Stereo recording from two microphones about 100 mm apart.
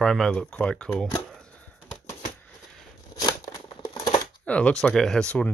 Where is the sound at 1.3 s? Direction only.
10° left (ahead or behind).